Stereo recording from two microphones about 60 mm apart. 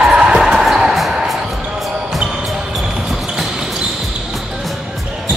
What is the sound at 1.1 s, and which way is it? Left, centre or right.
Basketball bounce, centre.